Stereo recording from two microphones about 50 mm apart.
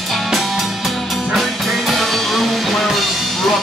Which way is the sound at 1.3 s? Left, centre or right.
Centre.